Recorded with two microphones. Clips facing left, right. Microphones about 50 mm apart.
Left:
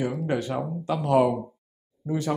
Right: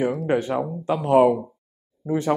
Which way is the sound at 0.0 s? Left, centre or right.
Right.